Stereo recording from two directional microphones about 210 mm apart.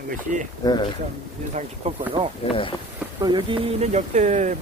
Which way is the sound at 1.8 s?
30° right (ahead or behind).